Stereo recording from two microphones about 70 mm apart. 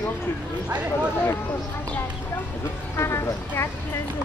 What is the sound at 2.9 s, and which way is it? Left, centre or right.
Speech, left.